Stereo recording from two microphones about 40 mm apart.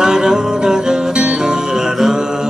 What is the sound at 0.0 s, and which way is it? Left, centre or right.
Music, centre.